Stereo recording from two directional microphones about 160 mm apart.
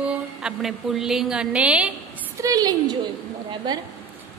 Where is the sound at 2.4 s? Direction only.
25° right (ahead or behind).